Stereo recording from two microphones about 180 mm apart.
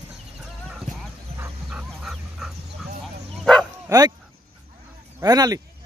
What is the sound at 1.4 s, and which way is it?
Dog, 5° right (ahead or behind).